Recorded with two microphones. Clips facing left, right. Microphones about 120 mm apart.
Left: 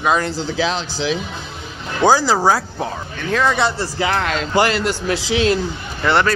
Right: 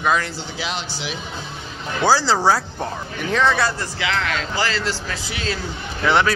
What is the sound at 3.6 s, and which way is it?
Speech, 25° left (ahead or behind).